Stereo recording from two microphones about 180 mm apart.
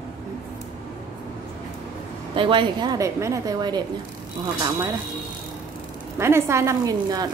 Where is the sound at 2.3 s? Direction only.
30° right (ahead or behind).